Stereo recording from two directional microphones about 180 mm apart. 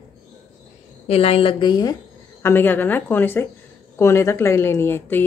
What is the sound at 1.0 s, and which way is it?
Speech, 35° left (ahead or behind).